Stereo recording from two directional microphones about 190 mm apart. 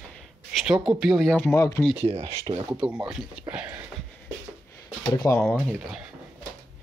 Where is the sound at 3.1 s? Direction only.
5° right (ahead or behind).